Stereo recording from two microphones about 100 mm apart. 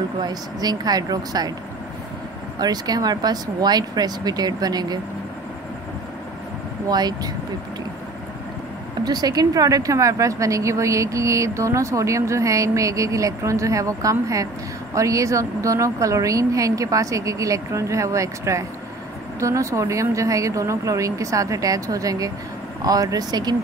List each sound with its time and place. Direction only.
0.2 s a woman's voice: 40° right (ahead or behind)
2.6 s a woman's voice: 40° right (ahead or behind)
6.9 s speech: 45° right (ahead or behind)
9.0 s a woman's voice: 40° right (ahead or behind)